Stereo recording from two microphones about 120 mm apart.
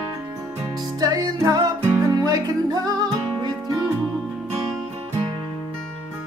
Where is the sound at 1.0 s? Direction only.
30° right (ahead or behind).